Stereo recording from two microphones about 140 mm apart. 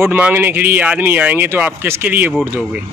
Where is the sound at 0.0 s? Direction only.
15° right (ahead or behind).